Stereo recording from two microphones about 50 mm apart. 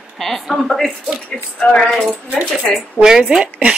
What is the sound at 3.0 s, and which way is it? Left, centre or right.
Speech, centre.